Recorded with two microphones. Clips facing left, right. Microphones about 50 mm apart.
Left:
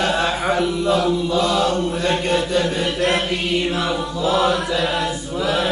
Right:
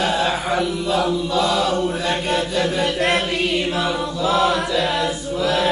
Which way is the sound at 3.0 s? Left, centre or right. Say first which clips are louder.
Left 1 dB; right.